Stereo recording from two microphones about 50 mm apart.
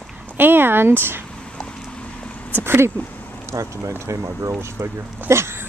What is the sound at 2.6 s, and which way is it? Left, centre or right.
Speech, right.